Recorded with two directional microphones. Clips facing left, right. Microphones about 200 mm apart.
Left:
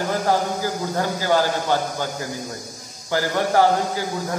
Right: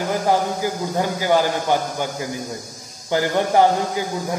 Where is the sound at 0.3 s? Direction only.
15° right (ahead or behind).